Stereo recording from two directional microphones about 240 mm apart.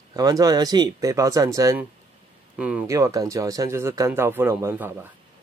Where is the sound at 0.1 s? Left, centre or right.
Centre.